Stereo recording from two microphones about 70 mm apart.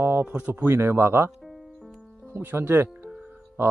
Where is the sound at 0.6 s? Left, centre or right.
Right.